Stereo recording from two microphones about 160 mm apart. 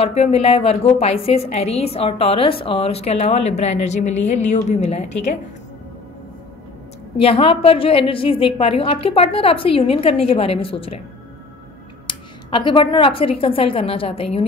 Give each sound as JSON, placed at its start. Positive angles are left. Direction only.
{"t": 0.0, "sound": "a woman's voice", "side_deg": 40}
{"t": 7.2, "sound": "a woman's voice", "side_deg": 35}
{"t": 12.1, "sound": "a woman's voice", "side_deg": 30}